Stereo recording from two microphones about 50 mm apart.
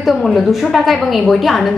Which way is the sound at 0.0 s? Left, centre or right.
Centre.